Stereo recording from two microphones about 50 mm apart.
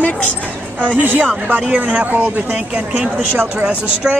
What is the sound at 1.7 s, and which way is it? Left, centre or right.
Speech, right.